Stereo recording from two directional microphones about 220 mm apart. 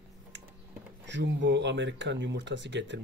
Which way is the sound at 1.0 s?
55° right (ahead or behind).